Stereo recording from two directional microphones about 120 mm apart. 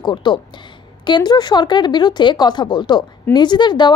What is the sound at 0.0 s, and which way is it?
A woman's voice, 40° left (ahead or behind).